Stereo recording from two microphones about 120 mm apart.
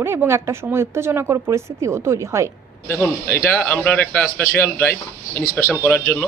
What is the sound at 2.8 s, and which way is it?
A man's voice, 20° left (ahead or behind).